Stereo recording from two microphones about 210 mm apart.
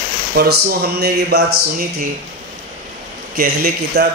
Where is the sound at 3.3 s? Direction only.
45° right (ahead or behind).